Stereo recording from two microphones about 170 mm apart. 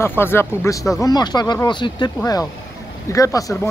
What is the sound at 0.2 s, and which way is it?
Speech, 15° left (ahead or behind).